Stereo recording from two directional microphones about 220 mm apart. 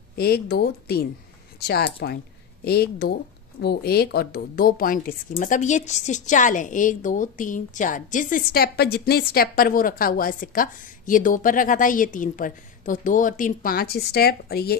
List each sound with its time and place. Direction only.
0.1 s a woman's voice: 45° left (ahead or behind)